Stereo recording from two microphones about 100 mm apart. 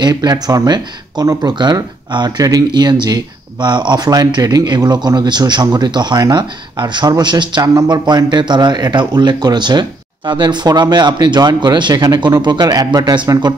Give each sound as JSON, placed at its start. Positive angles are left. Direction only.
{"t": 0.0, "sound": "speech", "side_deg": -40}